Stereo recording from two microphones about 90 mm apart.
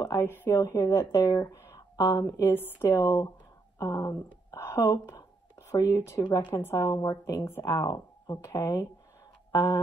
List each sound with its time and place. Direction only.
0.0 s speech: 30° left (ahead or behind)
2.4 s speech: 25° left (ahead or behind); by 4.6 s 40° left (ahead or behind)
4.6 s a woman's voice: 25° left (ahead or behind)
4.9 s a sound: 40° left (ahead or behind)
6.5 s speech: 30° left (ahead or behind)
6.9 s speech: 40° left (ahead or behind)
7.7 s speech: 45° left (ahead or behind)
9.5 s a sound: 30° left (ahead or behind)